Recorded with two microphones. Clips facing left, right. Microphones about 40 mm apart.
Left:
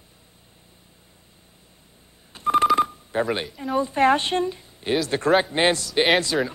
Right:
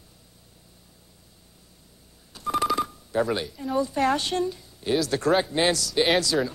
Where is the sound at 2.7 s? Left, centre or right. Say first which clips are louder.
Left 3 dB; left.